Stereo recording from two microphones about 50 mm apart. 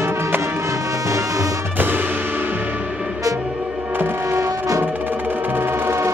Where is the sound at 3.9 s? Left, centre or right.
Right.